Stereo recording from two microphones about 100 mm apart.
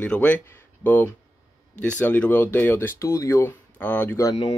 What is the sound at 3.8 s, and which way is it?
Speech, 15° left (ahead or behind).